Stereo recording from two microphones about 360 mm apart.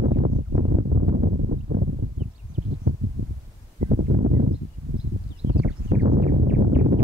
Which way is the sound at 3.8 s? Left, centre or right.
Centre.